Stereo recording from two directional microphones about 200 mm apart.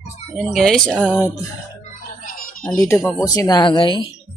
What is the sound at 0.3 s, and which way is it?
Speech, centre (ahead or behind).